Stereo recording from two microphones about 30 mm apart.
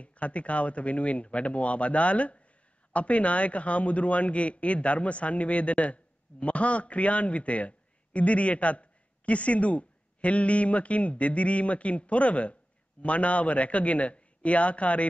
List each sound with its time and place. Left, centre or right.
0.0 s a man's voice: left